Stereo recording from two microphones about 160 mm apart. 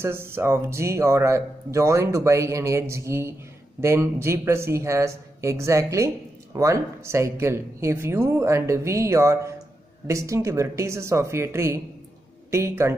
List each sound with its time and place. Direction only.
0.0 s speech: 15° right (ahead or behind)